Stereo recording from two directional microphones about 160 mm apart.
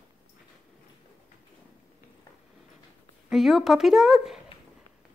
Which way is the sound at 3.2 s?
Centre (ahead or behind).